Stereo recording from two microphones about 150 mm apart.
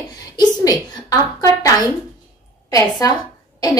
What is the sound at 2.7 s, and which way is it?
Speech, 25° left (ahead or behind).